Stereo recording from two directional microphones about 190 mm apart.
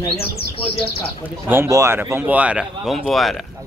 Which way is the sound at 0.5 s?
30° left (ahead or behind).